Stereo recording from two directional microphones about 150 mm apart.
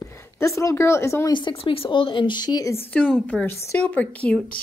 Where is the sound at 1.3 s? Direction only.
30° left (ahead or behind).